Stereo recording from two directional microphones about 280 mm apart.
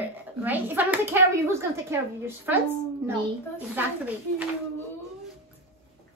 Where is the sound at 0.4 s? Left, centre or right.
Centre.